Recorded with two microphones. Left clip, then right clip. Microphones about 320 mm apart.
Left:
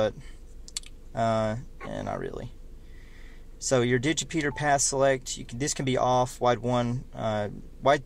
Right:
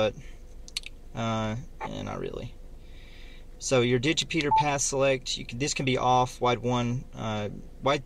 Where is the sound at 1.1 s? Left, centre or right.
Centre.